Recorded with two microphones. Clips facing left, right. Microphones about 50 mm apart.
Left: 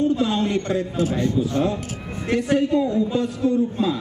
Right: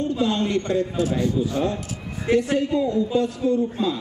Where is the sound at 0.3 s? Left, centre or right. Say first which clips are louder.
Left 1 dB; centre.